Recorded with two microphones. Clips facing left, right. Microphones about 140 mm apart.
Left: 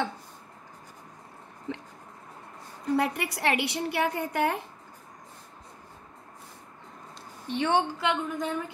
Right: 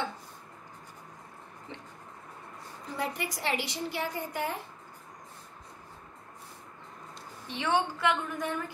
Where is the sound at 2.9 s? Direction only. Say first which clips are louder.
Left 7 dB; 70° left (ahead or behind).